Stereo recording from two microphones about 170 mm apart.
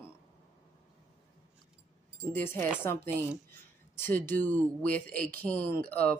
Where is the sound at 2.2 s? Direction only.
15° left (ahead or behind).